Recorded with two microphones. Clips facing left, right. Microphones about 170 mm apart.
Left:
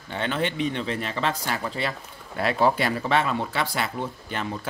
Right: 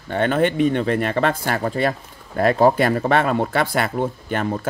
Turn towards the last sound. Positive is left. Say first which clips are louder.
# right 8 dB
turn(degrees=-50)  # may be behind; listen again after turning